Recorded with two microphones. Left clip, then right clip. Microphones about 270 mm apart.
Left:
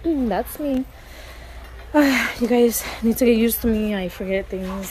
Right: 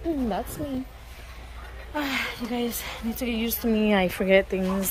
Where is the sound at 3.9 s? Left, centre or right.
Centre.